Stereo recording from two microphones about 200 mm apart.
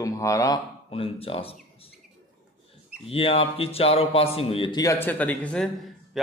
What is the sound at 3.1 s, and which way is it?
A man's voice, 30° left (ahead or behind).